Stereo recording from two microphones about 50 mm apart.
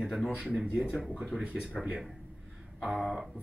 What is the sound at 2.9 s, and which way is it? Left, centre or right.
Speech, centre.